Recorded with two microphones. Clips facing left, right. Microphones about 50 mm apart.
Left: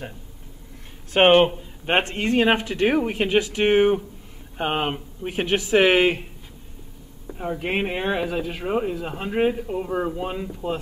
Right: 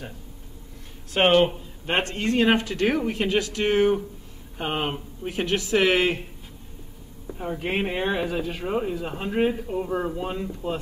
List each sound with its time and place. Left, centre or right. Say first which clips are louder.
1.1 s speech: left 3 dB; left
7.2 s speech: left 2 dB; centre